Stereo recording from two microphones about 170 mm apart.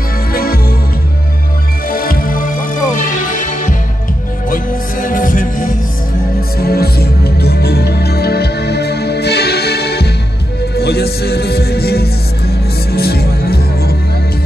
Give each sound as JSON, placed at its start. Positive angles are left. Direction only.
{"t": 0.3, "sound": "music", "side_deg": 60}
{"t": 1.9, "sound": "music", "side_deg": 55}
{"t": 5.0, "sound": "music", "side_deg": 50}
{"t": 6.6, "sound": "music", "side_deg": 65}